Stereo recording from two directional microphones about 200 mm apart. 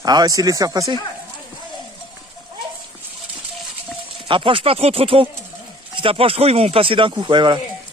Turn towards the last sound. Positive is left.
turn(degrees=-25)  # may be behind; listen again after turning